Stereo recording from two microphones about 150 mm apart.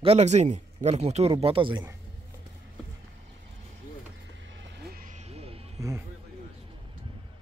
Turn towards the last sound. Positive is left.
turn(degrees=-40)  # may be behind; listen again after turning